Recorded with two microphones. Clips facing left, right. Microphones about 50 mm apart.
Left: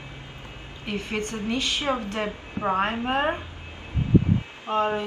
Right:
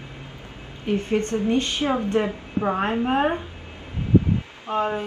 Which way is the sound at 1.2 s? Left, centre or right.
Right.